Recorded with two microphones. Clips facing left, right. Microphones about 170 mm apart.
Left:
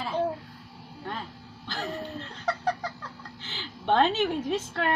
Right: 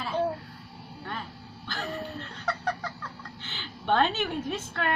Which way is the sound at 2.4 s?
30° left (ahead or behind).